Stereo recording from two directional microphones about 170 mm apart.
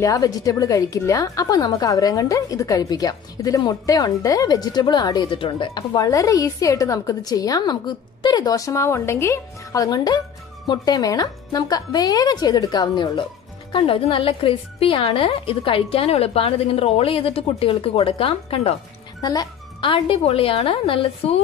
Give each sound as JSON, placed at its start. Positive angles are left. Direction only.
{"t": 0.0, "sound": "a woman's voice", "side_deg": 20}